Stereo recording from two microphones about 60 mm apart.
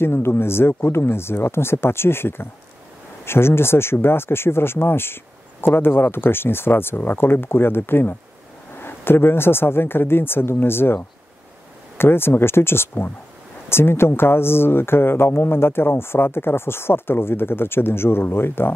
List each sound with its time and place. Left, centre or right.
0.0 s speech: left